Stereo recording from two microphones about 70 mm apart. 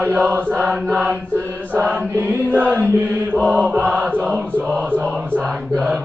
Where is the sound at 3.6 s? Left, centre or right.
Right.